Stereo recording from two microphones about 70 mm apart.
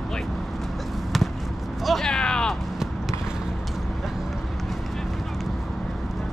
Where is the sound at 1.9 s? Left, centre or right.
Centre.